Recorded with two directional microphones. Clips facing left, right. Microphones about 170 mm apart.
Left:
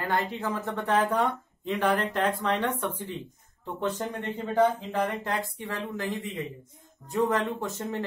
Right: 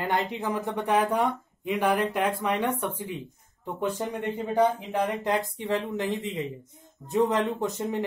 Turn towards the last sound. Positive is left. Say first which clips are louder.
# right 3 dB
turn(degrees=-20)  # may be behind; listen again after turning